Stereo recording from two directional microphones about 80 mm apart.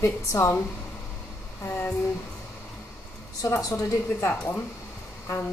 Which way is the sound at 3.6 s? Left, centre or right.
Left.